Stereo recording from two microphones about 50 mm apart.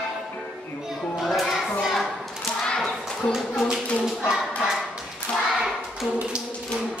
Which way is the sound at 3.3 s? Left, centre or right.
Centre.